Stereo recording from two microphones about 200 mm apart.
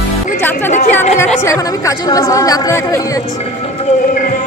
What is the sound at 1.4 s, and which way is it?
Speech, 15° left (ahead or behind).